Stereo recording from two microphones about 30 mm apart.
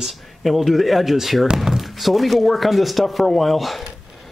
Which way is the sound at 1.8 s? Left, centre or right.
Centre.